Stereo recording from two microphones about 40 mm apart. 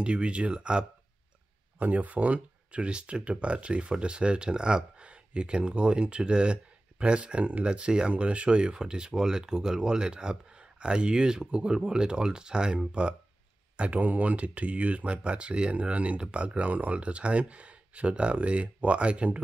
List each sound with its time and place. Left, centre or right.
0.0 s speech: right
1.8 s speech: right
13.7 s speech: right